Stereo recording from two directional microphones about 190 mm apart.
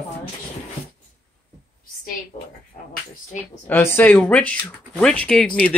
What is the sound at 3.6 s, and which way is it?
Speech, 10° left (ahead or behind).